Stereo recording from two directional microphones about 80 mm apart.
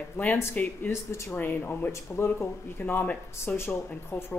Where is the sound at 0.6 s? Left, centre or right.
Centre.